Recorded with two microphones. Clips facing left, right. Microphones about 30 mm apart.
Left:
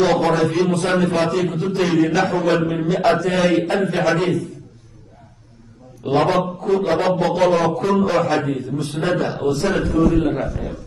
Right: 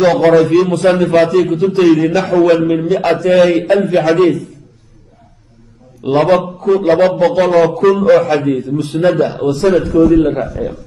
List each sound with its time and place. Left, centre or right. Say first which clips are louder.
0.0 s a man's voice: right 7 dB; right
6.0 s a man's voice: right 6 dB; right
10.2 s a man's voice: right 5 dB; centre